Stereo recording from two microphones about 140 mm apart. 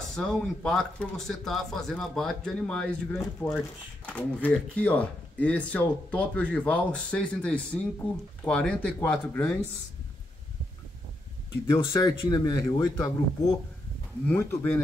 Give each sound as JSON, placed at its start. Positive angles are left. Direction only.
{"t": 0.1, "sound": "speech", "side_deg": 5}
{"t": 11.7, "sound": "speech", "side_deg": 25}
{"t": 14.2, "sound": "speech", "side_deg": 10}